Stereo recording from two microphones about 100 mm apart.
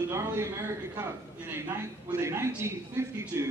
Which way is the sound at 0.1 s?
25° right (ahead or behind).